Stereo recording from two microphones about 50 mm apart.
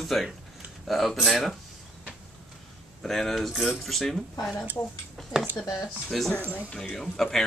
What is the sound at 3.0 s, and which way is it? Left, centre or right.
Speech, centre.